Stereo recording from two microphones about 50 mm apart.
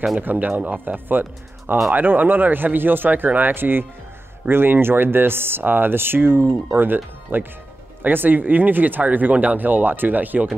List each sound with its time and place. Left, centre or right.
0.2 s speech: right